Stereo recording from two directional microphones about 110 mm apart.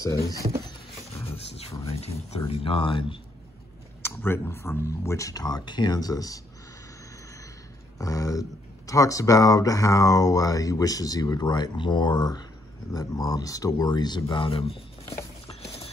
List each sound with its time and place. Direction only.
1.3 s a sound: 65° left (ahead or behind)
2.0 s speech: 70° left (ahead or behind)
2.4 s speech: 55° left (ahead or behind)
4.0 s speech: 20° left (ahead or behind)
8.0 s speech: 30° left (ahead or behind)
14.3 s speech: 50° left (ahead or behind)
15.4 s patter: 65° left (ahead or behind)